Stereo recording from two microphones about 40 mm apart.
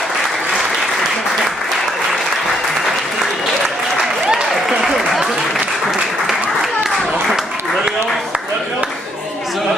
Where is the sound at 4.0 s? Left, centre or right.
Centre.